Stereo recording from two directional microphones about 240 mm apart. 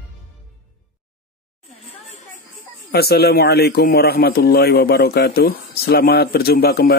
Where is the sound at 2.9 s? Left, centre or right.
Left.